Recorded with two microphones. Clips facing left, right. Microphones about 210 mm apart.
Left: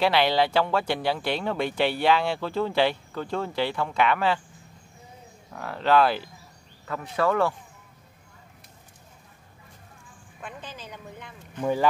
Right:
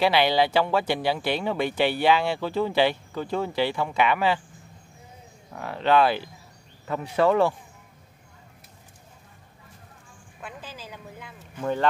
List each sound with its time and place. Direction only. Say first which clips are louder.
0.0 s speech: right 1 dB; 5° right (ahead or behind)
5.5 s speech: even; 5° right (ahead or behind)
6.9 s speech: right 3 dB; 20° right (ahead or behind)
10.4 s a sound: even; 5° right (ahead or behind)
11.6 s speech: left 1 dB; 10° left (ahead or behind)